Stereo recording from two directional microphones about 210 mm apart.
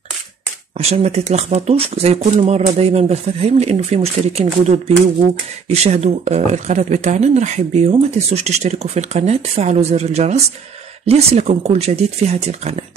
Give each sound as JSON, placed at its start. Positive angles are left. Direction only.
{"t": 0.7, "sound": "speech", "side_deg": -30}